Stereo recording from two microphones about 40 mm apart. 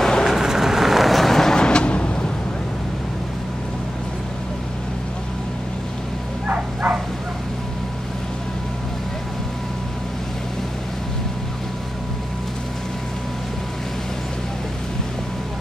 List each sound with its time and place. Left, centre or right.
0.2 s vehicle: centre
1.6 s vehicle: left
6.4 s bow-wow: right